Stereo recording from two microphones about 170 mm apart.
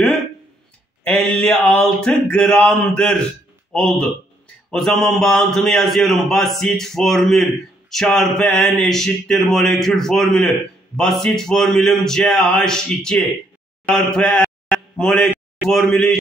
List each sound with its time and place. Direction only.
1.0 s a man's voice: 5° left (ahead or behind)